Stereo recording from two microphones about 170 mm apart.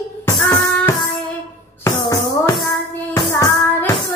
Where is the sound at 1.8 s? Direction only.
15° left (ahead or behind).